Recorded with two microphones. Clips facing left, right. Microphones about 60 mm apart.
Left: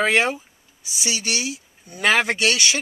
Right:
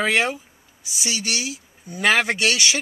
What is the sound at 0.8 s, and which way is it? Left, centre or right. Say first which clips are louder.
Speech: even; centre.